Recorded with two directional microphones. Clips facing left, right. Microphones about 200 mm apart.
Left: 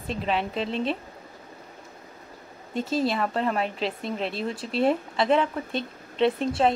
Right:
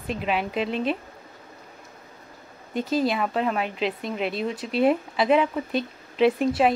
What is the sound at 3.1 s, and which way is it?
A woman's voice, 5° right (ahead or behind).